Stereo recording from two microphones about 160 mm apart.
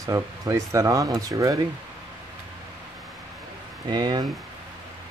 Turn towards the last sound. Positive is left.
turn(degrees=-25)  # may be behind; listen again after turning